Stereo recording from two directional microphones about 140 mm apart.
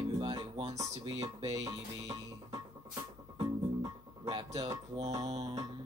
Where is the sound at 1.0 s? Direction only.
25° right (ahead or behind).